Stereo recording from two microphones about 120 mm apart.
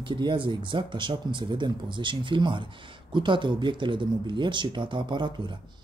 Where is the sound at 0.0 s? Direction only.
40° right (ahead or behind).